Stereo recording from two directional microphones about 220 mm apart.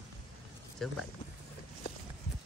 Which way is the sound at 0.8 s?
Centre (ahead or behind).